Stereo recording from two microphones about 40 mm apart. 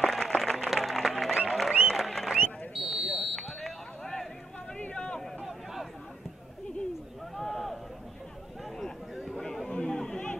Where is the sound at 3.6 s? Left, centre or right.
Centre.